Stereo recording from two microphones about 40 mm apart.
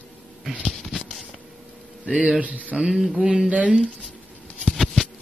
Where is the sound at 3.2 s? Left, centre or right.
Right.